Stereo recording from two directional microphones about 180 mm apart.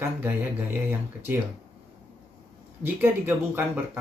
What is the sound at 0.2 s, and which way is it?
Speech, 10° right (ahead or behind).